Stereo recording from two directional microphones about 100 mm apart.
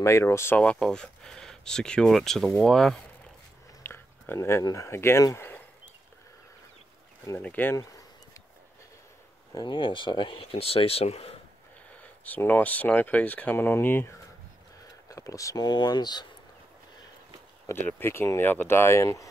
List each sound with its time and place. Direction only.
0.0 s speech: 30° left (ahead or behind)
0.6 s speech: 10° left (ahead or behind)
3.8 s a sound: 25° left (ahead or behind)
4.6 s speech: 30° left (ahead or behind)
7.4 s speech: 15° left (ahead or behind)
9.5 s speech: 50° left (ahead or behind); by 11.3 s 80° left
12.0 s speech: 15° left (ahead or behind)
15.0 s speech: 35° left (ahead or behind)
17.8 s speech: 20° left (ahead or behind)